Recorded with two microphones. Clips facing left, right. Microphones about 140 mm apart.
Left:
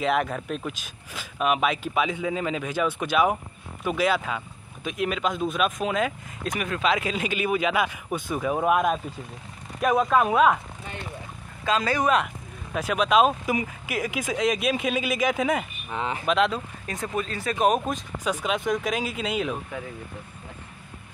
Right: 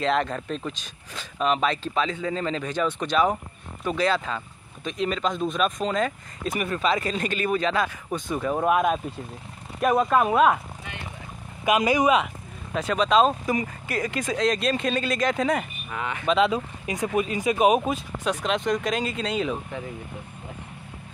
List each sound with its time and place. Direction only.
0.0 s speech: 5° left (ahead or behind)
11.6 s speech: 15° right (ahead or behind)
12.7 s speech: 5° left (ahead or behind)
15.9 s speech: 30° left (ahead or behind)
16.3 s speech: centre (ahead or behind)
16.5 s speech: 10° right (ahead or behind); by 19.8 s 5° left (ahead or behind)